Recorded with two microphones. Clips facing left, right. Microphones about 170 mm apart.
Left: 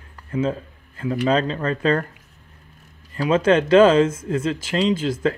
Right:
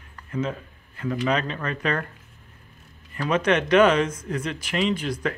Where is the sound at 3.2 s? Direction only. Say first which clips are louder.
Left 5 dB; 30° left (ahead or behind).